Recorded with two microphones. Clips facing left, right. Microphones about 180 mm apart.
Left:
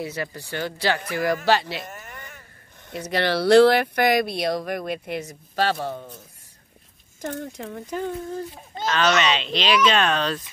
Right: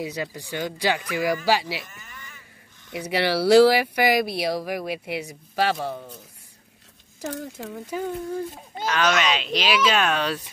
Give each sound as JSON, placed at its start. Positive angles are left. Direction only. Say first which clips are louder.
{"t": 0.0, "sound": "speech", "louder": "even", "side_deg": -15}
{"t": 1.8, "sound": "a sound", "louder": "left 5 dB", "side_deg": 60}
{"t": 2.9, "sound": "speech", "louder": "even", "side_deg": -10}
{"t": 7.2, "sound": "speech", "louder": "left 1 dB", "side_deg": -5}